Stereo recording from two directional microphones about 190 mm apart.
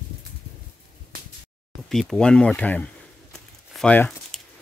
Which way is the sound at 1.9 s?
Centre (ahead or behind).